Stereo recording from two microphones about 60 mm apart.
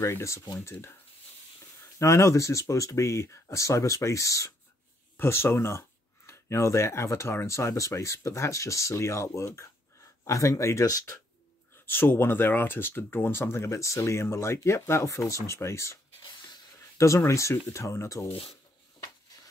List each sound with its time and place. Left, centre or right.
0.0 s speech: left
2.0 s speech: left
5.1 s speech: left
10.2 s speech: left
11.8 s speech: left
13.7 s speech: left
17.2 s speech: left